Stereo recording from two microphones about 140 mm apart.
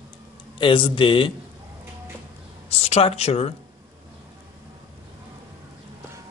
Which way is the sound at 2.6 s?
45° left (ahead or behind).